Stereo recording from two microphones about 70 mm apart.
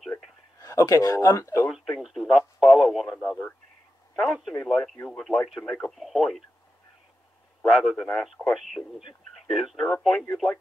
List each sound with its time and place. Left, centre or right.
0.6 s speech: left
1.7 s speech: centre
4.2 s speech: centre
7.7 s speech: centre
8.1 s speech: centre
8.5 s speech: centre